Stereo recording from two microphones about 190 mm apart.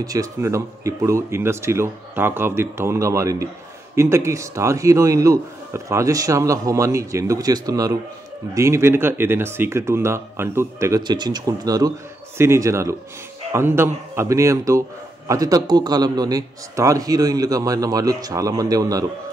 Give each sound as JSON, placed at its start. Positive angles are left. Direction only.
{"t": 0.0, "sound": "a man's voice", "side_deg": -20}